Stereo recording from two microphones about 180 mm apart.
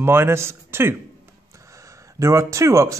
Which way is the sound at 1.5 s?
15° right (ahead or behind).